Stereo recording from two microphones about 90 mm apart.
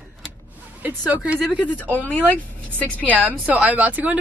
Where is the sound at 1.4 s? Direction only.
15° left (ahead or behind).